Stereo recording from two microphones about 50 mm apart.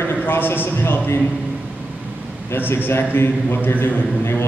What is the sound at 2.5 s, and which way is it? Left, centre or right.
A man's voice, left.